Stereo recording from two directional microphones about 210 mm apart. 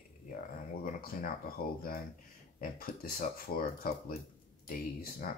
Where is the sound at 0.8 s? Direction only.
45° left (ahead or behind).